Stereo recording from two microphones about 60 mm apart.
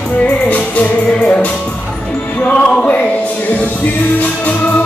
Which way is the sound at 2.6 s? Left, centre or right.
Centre.